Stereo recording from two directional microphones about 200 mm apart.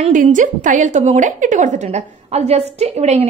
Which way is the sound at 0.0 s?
40° right (ahead or behind).